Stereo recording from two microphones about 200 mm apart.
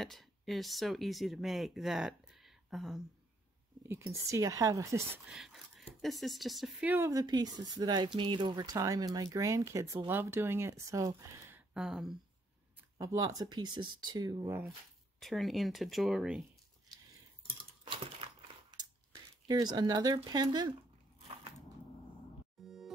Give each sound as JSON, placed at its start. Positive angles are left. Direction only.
{"t": 0.0, "sound": "speech", "side_deg": 0}
{"t": 3.8, "sound": "speech", "side_deg": -15}
{"t": 5.3, "sound": "speech", "side_deg": 0}
{"t": 6.9, "sound": "speech", "side_deg": -15}
{"t": 12.9, "sound": "speech", "side_deg": -20}
{"t": 15.1, "sound": "speech", "side_deg": 0}
{"t": 19.4, "sound": "speech", "side_deg": -20}
{"t": 22.6, "sound": "music", "side_deg": 0}